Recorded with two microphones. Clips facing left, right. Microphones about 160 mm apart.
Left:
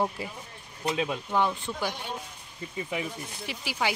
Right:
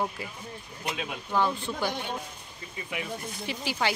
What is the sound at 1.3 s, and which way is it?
Speech, 15° left (ahead or behind).